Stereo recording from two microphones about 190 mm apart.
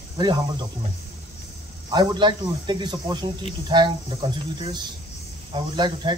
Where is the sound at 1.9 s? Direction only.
25° right (ahead or behind).